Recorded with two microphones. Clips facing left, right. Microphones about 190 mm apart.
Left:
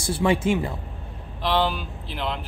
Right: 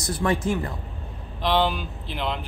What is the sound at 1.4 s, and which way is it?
Speech, centre (ahead or behind).